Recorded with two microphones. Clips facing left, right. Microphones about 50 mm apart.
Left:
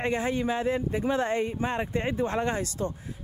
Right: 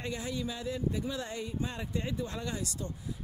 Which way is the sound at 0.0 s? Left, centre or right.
Left.